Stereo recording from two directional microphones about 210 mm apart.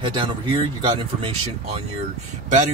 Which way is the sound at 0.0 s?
20° right (ahead or behind).